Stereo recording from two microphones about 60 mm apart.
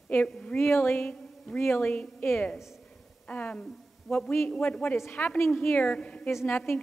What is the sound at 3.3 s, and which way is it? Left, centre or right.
Speech, left.